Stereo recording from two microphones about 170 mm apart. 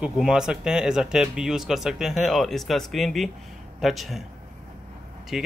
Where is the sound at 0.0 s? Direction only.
5° right (ahead or behind).